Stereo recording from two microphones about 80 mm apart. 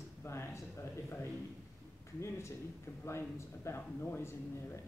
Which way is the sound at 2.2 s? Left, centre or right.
Left.